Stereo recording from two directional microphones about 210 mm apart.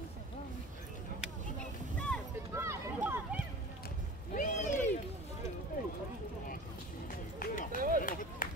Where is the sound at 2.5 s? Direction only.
10° right (ahead or behind).